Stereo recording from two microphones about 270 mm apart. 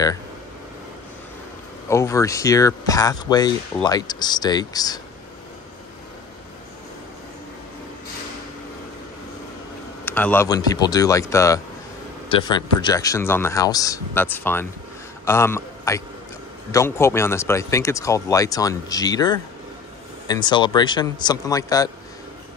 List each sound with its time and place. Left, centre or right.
1.9 s speech: centre
10.0 s a man's voice: centre